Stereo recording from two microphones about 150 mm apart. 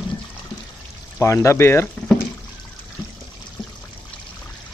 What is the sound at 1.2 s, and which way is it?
Speech, 20° left (ahead or behind).